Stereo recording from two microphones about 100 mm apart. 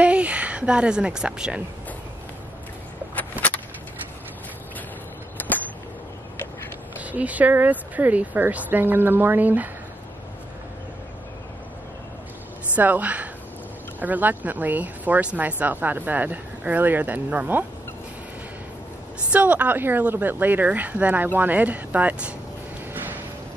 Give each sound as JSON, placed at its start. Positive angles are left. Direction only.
{"t": 0.0, "sound": "a woman's voice", "side_deg": -10}
{"t": 3.2, "sound": "a sound", "side_deg": 15}
{"t": 5.4, "sound": "a sound", "side_deg": 20}
{"t": 7.0, "sound": "speech", "side_deg": -15}
{"t": 12.7, "sound": "a woman's voice", "side_deg": -15}
{"t": 19.3, "sound": "speech", "side_deg": -15}